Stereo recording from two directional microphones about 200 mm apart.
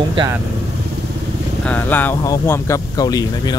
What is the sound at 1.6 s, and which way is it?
Speech, 10° left (ahead or behind).